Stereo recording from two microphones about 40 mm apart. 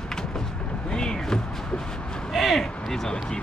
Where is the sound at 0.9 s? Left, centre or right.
Centre.